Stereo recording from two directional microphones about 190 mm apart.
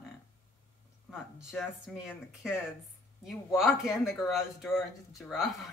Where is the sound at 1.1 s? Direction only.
5° right (ahead or behind).